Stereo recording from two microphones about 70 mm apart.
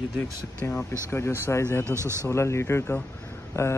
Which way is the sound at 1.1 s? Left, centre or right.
Left.